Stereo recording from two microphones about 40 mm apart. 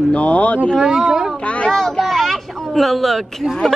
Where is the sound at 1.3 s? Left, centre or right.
Left.